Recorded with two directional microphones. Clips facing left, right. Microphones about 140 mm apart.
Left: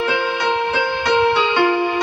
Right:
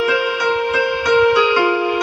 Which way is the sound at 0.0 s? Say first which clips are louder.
Right 2 dB; 25° left (ahead or behind).